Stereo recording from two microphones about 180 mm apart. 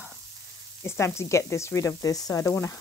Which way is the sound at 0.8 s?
15° left (ahead or behind).